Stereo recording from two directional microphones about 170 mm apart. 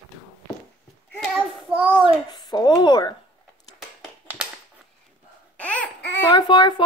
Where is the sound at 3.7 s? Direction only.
5° right (ahead or behind).